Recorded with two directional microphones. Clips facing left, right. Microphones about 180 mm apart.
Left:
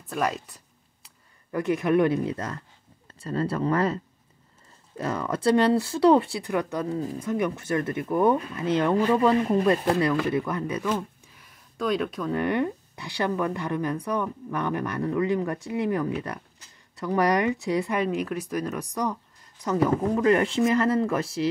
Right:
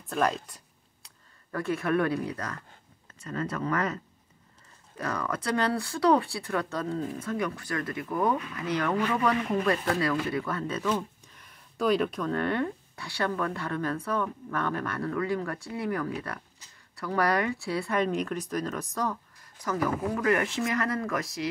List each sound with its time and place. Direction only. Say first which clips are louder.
0.1 s speech: even; 5° left (ahead or behind)
1.5 s speech: left 5 dB; 20° left (ahead or behind); by 9.7 s 35° left (ahead or behind)
9.7 s speech: left 4 dB; 20° left (ahead or behind)